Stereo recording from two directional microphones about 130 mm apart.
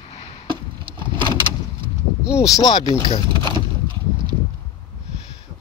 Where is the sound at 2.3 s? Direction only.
25° left (ahead or behind).